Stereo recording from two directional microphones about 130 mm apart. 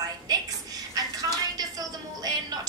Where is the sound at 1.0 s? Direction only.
30° right (ahead or behind).